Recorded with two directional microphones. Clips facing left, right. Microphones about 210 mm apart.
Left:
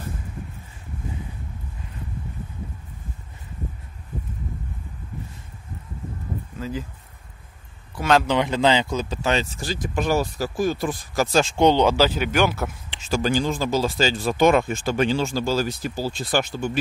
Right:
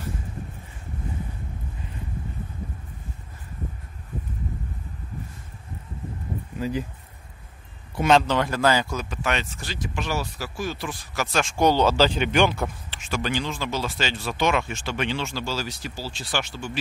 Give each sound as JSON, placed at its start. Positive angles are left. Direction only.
{"t": 6.6, "sound": "speech", "side_deg": -15}
{"t": 8.3, "sound": "speech", "side_deg": 20}
{"t": 9.9, "sound": "speech", "side_deg": 50}
{"t": 11.3, "sound": "speech", "side_deg": 25}
{"t": 12.2, "sound": "speech", "side_deg": 5}
{"t": 13.1, "sound": "speech", "side_deg": 35}